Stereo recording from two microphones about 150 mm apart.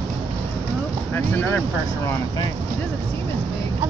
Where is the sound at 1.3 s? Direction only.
10° left (ahead or behind).